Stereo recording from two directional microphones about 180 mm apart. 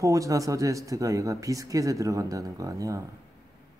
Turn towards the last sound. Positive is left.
turn(degrees=-20)  # may be behind; listen again after turning